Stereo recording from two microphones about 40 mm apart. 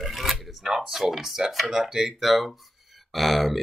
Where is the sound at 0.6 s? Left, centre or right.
Centre.